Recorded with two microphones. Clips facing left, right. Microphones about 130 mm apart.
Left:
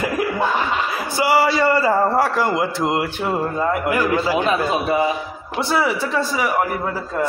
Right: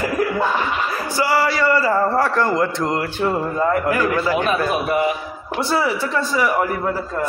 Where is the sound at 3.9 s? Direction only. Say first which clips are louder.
Even; 25° left (ahead or behind).